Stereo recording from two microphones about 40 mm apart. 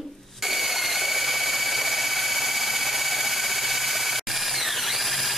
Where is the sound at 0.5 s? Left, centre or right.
Centre.